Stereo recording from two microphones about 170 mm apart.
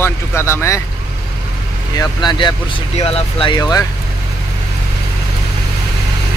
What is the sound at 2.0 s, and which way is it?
Speech, 25° left (ahead or behind).